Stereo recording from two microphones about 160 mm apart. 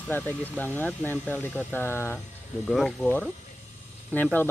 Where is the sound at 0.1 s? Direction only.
10° left (ahead or behind).